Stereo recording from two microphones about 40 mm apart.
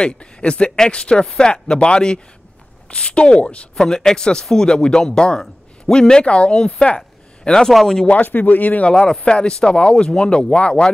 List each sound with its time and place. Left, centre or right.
0.0 s speech: left
3.7 s speech: centre
6.2 s speech: left
8.1 s speech: left
8.9 s speech: centre